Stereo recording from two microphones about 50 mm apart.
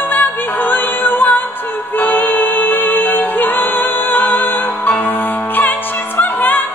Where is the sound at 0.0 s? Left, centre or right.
Left.